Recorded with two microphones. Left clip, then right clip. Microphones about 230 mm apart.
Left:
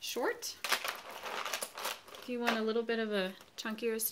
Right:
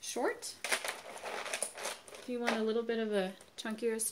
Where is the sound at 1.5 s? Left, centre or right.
Centre.